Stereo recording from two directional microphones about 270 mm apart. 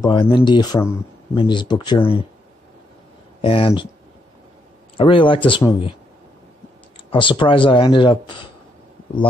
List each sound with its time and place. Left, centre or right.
0.0 s speech: centre
3.4 s speech: left
4.9 s speech: centre
7.1 s speech: centre